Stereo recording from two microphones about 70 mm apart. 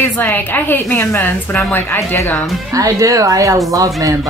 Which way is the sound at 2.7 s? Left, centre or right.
Right.